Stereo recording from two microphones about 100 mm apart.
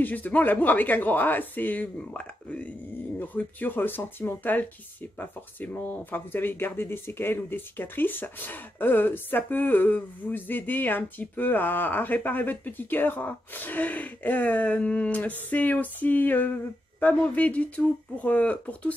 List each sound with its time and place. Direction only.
0.0 s speech: 15° left (ahead or behind)